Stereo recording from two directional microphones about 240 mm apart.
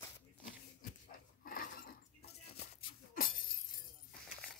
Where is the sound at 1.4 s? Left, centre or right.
Left.